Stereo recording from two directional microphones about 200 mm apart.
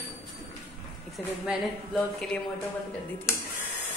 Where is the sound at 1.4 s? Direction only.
Centre (ahead or behind).